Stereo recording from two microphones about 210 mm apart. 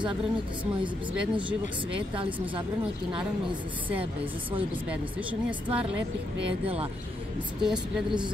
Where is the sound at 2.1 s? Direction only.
25° right (ahead or behind).